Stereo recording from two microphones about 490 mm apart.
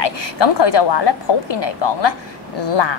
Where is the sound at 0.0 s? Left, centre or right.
Left.